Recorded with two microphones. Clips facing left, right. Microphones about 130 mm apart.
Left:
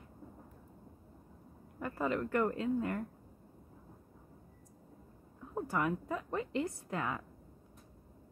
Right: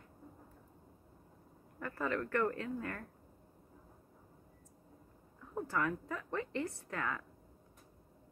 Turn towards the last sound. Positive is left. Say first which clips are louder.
# left 2 dB
turn(degrees=20)  # may be behind; listen again after turning